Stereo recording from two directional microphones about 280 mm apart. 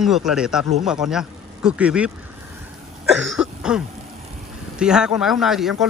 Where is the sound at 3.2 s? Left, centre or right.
Centre.